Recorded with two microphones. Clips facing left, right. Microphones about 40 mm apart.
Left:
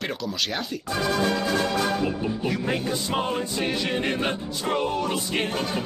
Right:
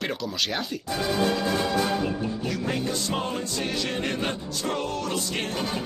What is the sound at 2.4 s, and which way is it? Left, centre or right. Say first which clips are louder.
Music: left 3 dB; centre.